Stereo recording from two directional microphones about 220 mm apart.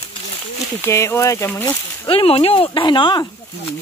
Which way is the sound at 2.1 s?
25° left (ahead or behind).